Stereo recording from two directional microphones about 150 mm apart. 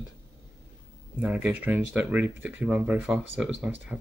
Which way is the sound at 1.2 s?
10° right (ahead or behind).